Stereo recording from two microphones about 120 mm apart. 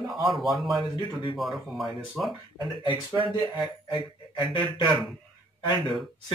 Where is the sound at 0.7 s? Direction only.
35° right (ahead or behind).